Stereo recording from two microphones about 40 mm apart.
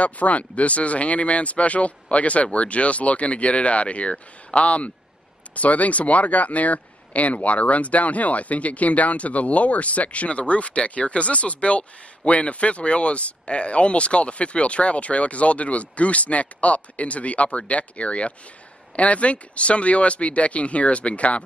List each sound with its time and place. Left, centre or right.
0.0 s speech: left